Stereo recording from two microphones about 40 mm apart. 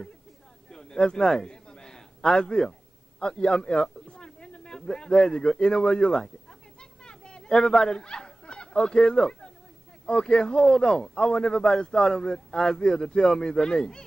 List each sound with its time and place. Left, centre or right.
0.7 s a sound: centre
4.8 s a man's voice: centre
6.8 s fowl: left
10.0 s a man's voice: centre